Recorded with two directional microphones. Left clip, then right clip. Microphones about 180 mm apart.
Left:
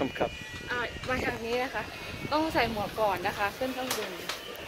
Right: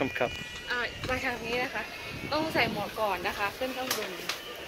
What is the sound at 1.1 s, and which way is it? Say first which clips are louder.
A woman's voice: left 1 dB; 65° left (ahead or behind).